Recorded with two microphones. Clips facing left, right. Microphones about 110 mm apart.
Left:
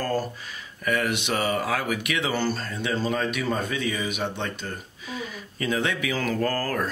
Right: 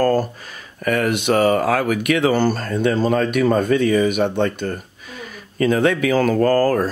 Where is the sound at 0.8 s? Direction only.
50° right (ahead or behind).